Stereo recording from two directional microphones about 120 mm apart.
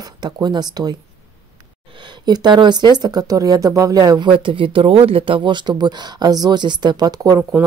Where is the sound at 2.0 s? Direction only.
40° right (ahead or behind).